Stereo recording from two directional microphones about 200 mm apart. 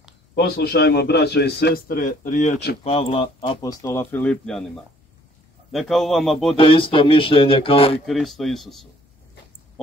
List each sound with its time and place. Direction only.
0.3 s a man's voice: 55° left (ahead or behind); by 3.7 s 25° left (ahead or behind)
3.8 s speech: 10° left (ahead or behind)
5.7 s a man's voice: centre (ahead or behind)
6.5 s speech: 25° left (ahead or behind)
8.0 s a man's voice: centre (ahead or behind)